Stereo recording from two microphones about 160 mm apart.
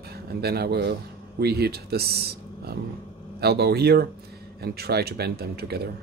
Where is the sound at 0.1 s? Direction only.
80° right.